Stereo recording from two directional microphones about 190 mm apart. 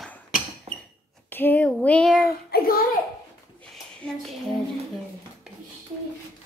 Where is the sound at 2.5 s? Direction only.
50° left (ahead or behind).